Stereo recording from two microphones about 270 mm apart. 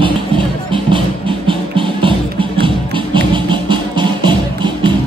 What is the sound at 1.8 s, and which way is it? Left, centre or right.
Music, centre.